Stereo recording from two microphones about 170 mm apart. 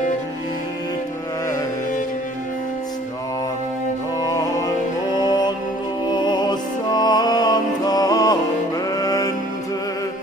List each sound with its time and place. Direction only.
4.2 s music: 25° left (ahead or behind)